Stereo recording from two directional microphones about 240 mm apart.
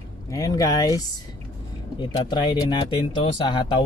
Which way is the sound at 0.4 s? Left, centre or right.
Centre.